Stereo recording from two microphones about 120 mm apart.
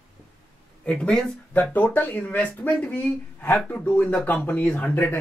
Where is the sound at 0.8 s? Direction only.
10° left (ahead or behind).